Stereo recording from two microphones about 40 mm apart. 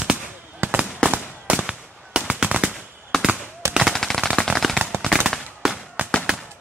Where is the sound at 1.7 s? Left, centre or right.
Right.